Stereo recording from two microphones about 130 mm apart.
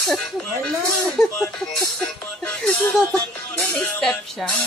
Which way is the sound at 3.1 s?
15° left (ahead or behind).